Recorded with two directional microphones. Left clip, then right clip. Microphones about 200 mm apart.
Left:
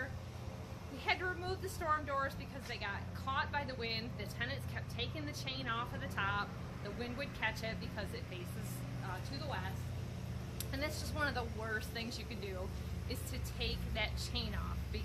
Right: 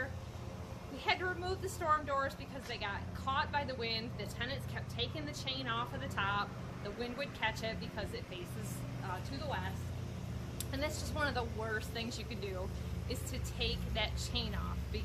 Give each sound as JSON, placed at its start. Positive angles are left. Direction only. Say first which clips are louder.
{"t": 1.0, "sound": "a woman's voice", "louder": "right 2 dB", "side_deg": 5}
{"t": 10.7, "sound": "a woman's voice", "louder": "right 2 dB", "side_deg": 0}
{"t": 13.1, "sound": "a woman's voice", "louder": "right 3 dB", "side_deg": 0}